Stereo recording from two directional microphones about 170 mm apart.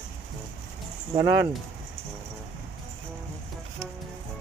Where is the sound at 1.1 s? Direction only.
20° right (ahead or behind).